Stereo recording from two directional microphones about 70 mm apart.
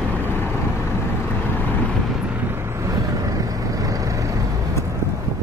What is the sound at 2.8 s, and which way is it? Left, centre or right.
Vehicle, right.